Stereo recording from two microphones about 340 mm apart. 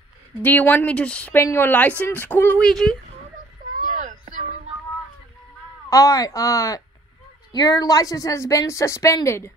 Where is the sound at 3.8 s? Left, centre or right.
Right.